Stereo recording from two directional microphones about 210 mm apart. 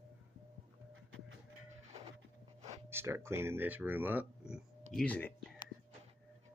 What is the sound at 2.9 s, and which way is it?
Speech, 10° right (ahead or behind).